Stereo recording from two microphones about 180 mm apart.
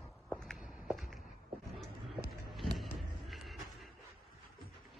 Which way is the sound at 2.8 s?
Centre (ahead or behind).